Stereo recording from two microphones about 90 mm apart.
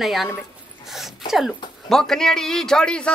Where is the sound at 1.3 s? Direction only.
Centre (ahead or behind).